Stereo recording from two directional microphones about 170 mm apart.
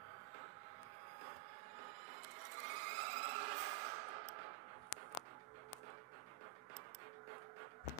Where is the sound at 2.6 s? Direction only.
40° right (ahead or behind).